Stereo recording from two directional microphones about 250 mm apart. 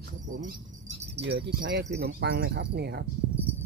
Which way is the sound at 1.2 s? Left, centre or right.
Right.